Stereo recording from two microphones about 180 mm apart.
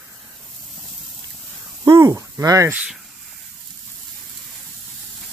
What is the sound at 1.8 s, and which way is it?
Speech, 20° right (ahead or behind).